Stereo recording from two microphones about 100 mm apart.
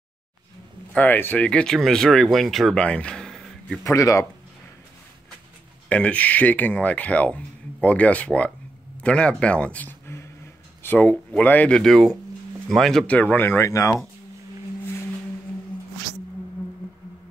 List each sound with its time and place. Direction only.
0.9 s speech: 20° left (ahead or behind); by 2.8 s centre (ahead or behind)
2.8 s a sound: 10° left (ahead or behind)
3.8 s speech: 35° left (ahead or behind)
5.9 s speech: 15° left (ahead or behind); by 14.0 s 30° left (ahead or behind)